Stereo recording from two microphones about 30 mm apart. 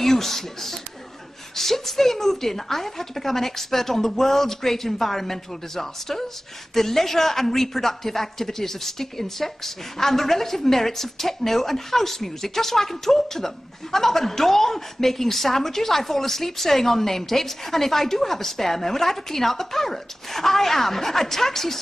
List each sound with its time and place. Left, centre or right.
0.0 s a woman's voice: centre